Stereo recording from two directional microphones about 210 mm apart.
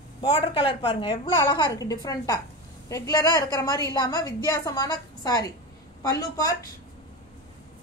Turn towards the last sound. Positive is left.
turn(degrees=15)  # may be behind; listen again after turning